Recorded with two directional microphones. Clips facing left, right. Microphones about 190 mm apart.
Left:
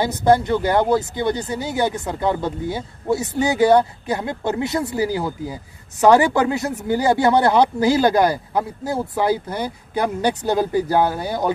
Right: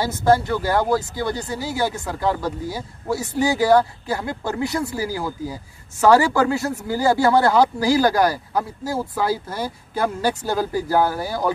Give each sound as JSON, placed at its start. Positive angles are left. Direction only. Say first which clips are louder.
{"t": 0.0, "sound": "speech", "louder": "left 2 dB", "side_deg": 20}